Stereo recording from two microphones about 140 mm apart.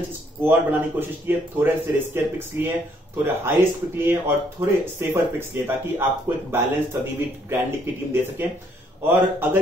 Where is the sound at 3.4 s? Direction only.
15° right (ahead or behind).